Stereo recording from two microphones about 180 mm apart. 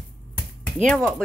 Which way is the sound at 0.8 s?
5° left (ahead or behind).